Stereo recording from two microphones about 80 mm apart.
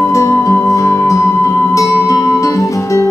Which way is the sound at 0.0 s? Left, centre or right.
Left.